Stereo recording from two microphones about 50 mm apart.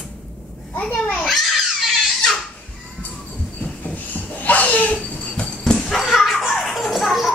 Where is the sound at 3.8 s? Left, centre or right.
Left.